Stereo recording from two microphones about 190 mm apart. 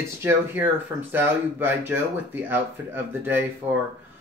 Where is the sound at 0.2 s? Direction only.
15° right (ahead or behind).